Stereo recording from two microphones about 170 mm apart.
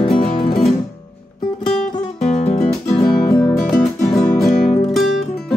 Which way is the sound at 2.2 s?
40° left (ahead or behind).